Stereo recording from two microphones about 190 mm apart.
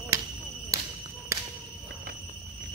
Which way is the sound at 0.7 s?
15° right (ahead or behind).